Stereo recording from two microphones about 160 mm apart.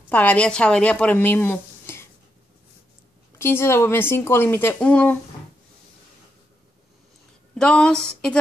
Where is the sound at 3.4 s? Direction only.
15° left (ahead or behind).